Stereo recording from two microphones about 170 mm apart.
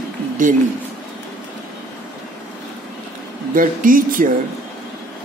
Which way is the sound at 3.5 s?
55° right (ahead or behind).